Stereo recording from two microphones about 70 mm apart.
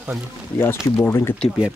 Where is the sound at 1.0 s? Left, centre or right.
Left.